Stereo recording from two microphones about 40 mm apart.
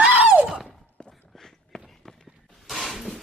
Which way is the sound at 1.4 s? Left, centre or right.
Centre.